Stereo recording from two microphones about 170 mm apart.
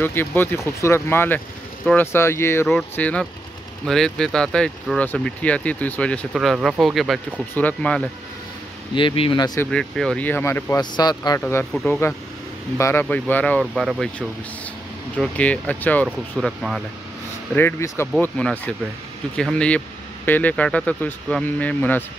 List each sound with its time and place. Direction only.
0.0 s speech: 10° left (ahead or behind)
8.9 s speech: 30° left (ahead or behind)
9.6 s speech: 5° left (ahead or behind)
10.8 s speech: 25° left (ahead or behind)
11.7 s speech: centre (ahead or behind)
12.7 s speech: 15° left (ahead or behind); by 16.8 s centre (ahead or behind)
17.6 s speech: 15° left (ahead or behind)